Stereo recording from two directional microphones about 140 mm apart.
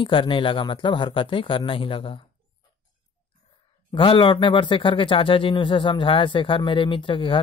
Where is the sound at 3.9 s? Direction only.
40° left (ahead or behind).